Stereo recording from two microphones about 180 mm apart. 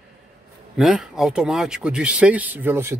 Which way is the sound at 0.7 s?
Centre (ahead or behind).